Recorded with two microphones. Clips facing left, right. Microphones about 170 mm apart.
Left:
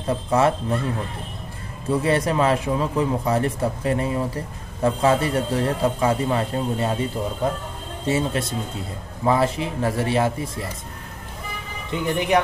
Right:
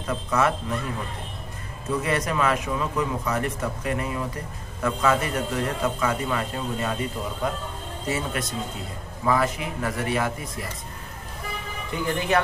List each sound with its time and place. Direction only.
0.0 s a man's voice: 30° left (ahead or behind)
1.9 s a man's voice: 30° left (ahead or behind)
11.9 s a man's voice: 20° left (ahead or behind)